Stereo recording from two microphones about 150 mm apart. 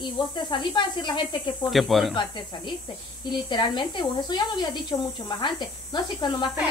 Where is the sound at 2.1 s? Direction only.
30° left (ahead or behind).